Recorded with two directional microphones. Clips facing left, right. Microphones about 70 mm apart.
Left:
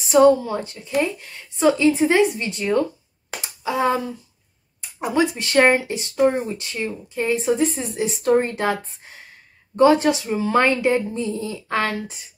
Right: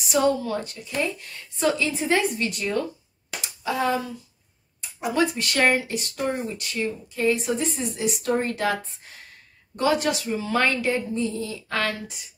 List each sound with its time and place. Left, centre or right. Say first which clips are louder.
0.1 s speech: left 8 dB; left
3.3 s a sound: left 2 dB; left
5.1 s speech: left 5 dB; centre